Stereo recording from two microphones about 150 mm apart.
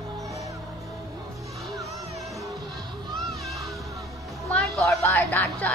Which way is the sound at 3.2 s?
Centre (ahead or behind).